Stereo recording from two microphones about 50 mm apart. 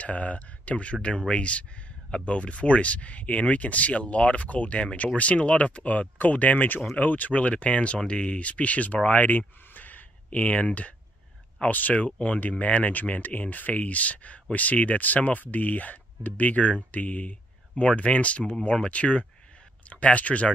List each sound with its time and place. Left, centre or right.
0.0 s speech: left
9.7 s a sound: left
11.9 s speech: left